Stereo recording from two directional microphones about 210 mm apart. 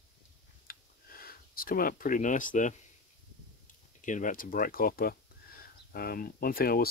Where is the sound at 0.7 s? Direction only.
45° left (ahead or behind).